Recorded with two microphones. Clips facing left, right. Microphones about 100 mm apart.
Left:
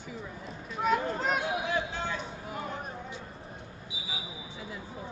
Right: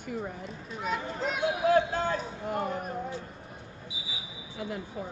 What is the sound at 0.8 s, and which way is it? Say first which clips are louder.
Speech: left 4 dB; 50° left (ahead or behind).